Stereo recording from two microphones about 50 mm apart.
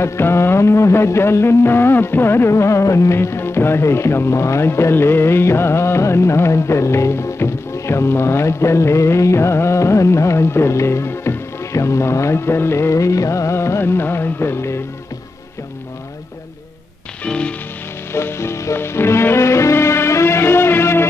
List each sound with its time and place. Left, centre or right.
0.0 s speech: left
2.5 s music: left
3.2 s speech: left
17.3 s music: left
18.1 s music: left
19.3 s music: left